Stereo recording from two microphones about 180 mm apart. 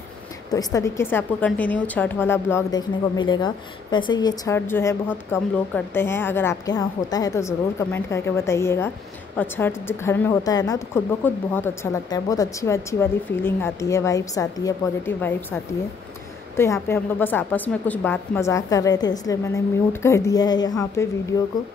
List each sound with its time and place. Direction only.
0.5 s a woman's voice: 20° left (ahead or behind)
3.2 s a woman's voice: 25° left (ahead or behind)